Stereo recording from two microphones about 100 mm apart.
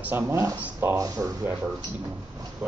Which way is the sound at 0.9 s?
35° right (ahead or behind).